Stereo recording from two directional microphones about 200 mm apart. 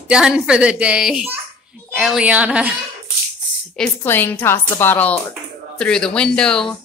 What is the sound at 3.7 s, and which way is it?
A woman's voice, 10° left (ahead or behind).